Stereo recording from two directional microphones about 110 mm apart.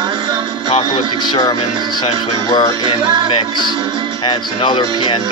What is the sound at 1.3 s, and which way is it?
Music, 45° left (ahead or behind).